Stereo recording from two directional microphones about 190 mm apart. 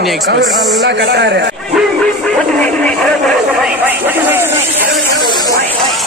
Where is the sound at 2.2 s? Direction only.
5° left (ahead or behind).